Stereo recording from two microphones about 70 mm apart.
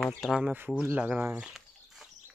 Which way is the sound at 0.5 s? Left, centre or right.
Right.